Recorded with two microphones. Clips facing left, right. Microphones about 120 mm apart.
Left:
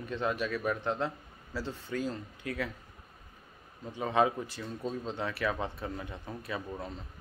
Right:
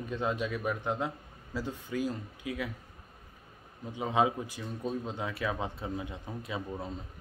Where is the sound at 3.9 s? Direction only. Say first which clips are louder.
Even; 15° right (ahead or behind).